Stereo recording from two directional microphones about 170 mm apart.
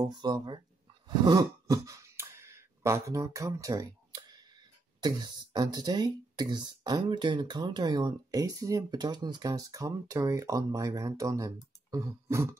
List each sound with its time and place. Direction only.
0.0 s speech: 25° right (ahead or behind)
1.0 s throat clearing: 25° right (ahead or behind)
5.0 s speech: 25° right (ahead or behind)